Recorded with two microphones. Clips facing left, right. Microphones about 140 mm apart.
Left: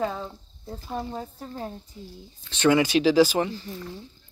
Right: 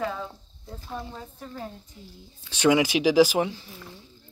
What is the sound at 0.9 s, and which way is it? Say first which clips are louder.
Speech: left 5 dB; 35° left (ahead or behind).